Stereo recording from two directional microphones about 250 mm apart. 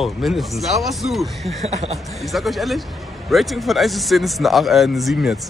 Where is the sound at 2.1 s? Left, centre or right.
Centre.